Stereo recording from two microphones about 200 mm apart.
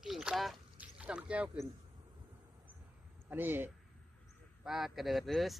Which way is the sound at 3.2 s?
10° right (ahead or behind).